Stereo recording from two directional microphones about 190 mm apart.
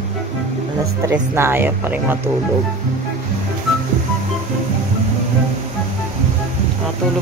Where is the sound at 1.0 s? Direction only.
15° right (ahead or behind).